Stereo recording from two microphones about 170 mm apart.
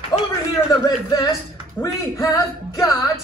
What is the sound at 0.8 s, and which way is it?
Speech, 20° left (ahead or behind).